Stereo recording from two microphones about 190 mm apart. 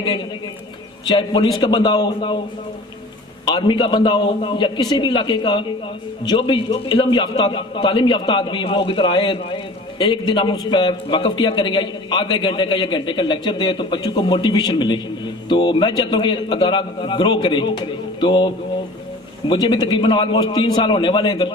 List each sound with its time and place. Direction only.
1.0 s a man's voice: 25° left (ahead or behind)
3.4 s a man's voice: 25° left (ahead or behind)